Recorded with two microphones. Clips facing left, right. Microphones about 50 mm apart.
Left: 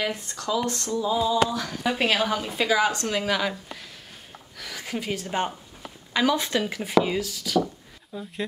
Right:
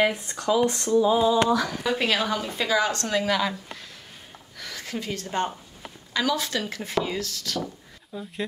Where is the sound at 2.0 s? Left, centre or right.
Centre.